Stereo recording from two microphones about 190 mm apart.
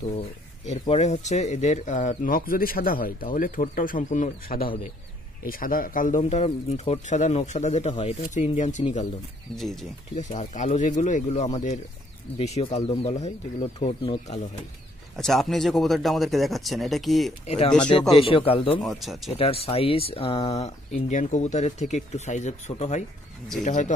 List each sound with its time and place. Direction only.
0.7 s speech: 35° left (ahead or behind)
9.6 s speech: centre (ahead or behind)
10.1 s speech: 40° left (ahead or behind)
15.1 s speech: centre (ahead or behind)
18.3 s a man's voice: 30° left (ahead or behind)
18.8 s speech: centre (ahead or behind)
19.3 s speech: 30° left (ahead or behind)